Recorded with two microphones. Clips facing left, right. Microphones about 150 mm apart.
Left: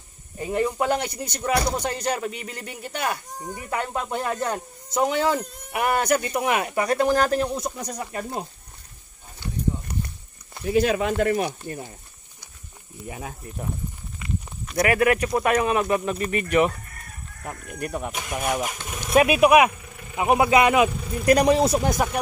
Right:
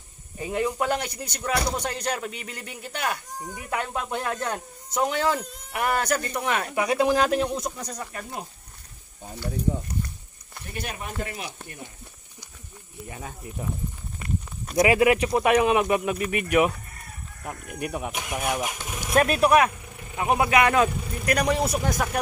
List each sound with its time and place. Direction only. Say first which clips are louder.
0.5 s speech: left 2 dB; centre (ahead or behind)
6.7 s speech: right 2 dB; 5° right (ahead or behind); by 8.5 s 25° left (ahead or behind)
10.6 s speech: left 14 dB; 90° left
14.8 s speech: right 1 dB; 20° right (ahead or behind)
19.1 s speech: left 3 dB; 10° left (ahead or behind)
21.3 s speech: left 6 dB; 30° left (ahead or behind)